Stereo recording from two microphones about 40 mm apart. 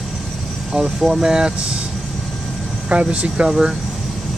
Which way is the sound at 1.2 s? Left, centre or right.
Centre.